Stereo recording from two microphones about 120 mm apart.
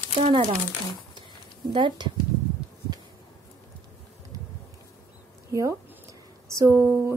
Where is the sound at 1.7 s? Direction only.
45° right (ahead or behind).